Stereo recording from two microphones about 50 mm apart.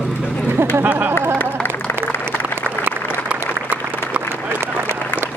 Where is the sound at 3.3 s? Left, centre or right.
Right.